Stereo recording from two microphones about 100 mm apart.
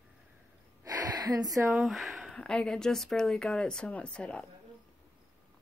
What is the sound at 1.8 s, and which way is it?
Speech, centre (ahead or behind).